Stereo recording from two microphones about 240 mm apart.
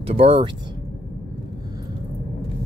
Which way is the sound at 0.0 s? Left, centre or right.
Right.